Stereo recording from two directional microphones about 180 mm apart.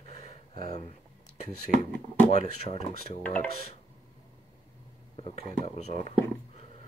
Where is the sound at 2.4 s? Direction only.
35° left (ahead or behind).